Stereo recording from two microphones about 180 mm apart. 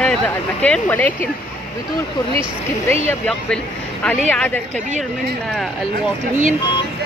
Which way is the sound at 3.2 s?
5° left (ahead or behind).